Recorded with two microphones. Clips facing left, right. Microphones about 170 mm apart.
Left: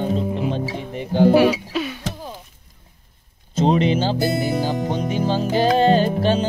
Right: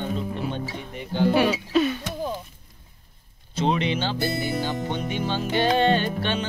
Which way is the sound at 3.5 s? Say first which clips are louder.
Left 6 dB; 35° left (ahead or behind).